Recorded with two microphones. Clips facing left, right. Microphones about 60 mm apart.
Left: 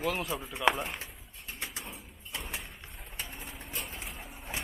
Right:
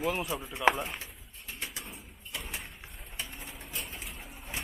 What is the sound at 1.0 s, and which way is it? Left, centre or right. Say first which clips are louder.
Bird: left 1 dB; left.